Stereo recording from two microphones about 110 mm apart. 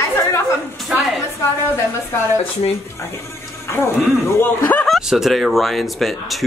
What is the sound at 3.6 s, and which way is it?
Music, 20° left (ahead or behind).